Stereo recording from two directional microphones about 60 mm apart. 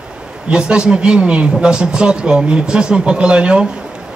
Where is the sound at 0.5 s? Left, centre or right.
Centre.